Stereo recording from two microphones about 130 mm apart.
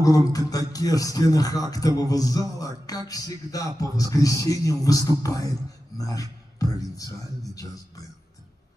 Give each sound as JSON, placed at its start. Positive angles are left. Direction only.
{"t": 0.0, "sound": "a man's voice", "side_deg": 25}